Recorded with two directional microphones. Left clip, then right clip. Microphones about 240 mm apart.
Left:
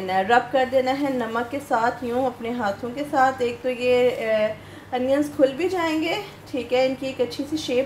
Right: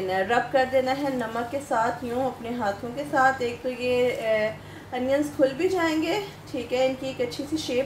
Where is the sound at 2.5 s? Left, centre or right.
Left.